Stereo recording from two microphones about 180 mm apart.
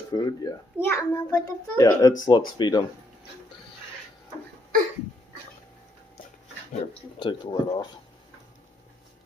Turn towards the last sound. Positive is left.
turn(degrees=25)  # may be behind; listen again after turning